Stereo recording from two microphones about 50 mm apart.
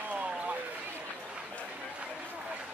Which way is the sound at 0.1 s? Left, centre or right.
Right.